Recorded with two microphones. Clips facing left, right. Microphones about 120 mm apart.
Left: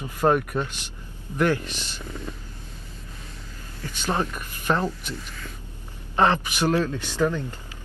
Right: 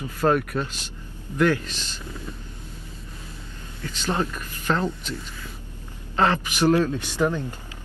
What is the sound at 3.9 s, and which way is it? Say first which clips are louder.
Speech: even; 15° left (ahead or behind).